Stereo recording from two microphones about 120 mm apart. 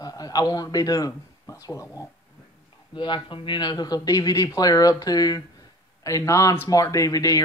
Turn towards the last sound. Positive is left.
turn(degrees=30)  # may be behind; listen again after turning